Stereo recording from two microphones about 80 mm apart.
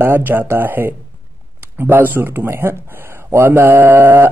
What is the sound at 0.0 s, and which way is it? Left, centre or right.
Speech, right.